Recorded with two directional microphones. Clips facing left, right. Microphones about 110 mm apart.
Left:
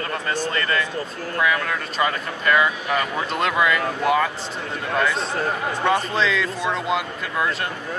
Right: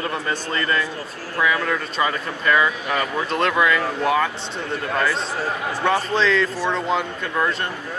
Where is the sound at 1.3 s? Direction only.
Centre (ahead or behind).